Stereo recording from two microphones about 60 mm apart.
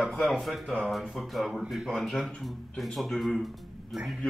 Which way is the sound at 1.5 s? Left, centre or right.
Centre.